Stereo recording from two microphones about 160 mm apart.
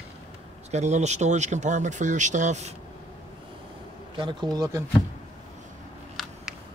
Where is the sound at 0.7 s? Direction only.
45° right (ahead or behind).